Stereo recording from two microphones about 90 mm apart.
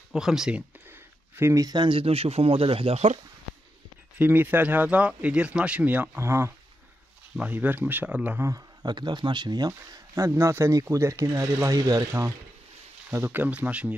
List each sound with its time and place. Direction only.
0.1 s speech: 5° right (ahead or behind)
0.8 s a sound: 25° right (ahead or behind)
1.5 s speech: 40° right (ahead or behind)
1.8 s speech: 80° right
4.2 s speech: 20° right (ahead or behind)
6.1 s speech: 30° right (ahead or behind)
7.3 s speech: 20° right (ahead or behind)
8.4 s speech: 35° right (ahead or behind)
8.8 s speech: 55° right (ahead or behind)
9.7 s speech: 35° right (ahead or behind)
12.1 s speech: 35° right (ahead or behind); by 13.9 s 15° right (ahead or behind)